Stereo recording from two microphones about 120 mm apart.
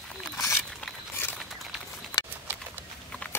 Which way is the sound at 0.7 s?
5° left (ahead or behind).